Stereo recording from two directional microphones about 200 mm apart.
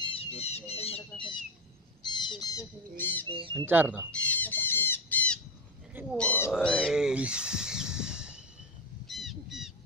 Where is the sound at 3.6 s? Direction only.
10° right (ahead or behind).